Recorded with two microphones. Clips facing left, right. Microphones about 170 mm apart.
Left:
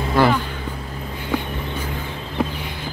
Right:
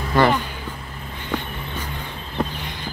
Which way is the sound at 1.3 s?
10° left (ahead or behind).